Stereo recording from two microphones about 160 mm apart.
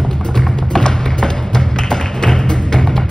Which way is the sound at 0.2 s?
5° left (ahead or behind).